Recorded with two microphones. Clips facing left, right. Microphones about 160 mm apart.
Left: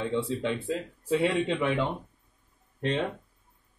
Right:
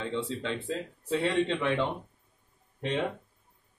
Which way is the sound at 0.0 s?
10° left (ahead or behind).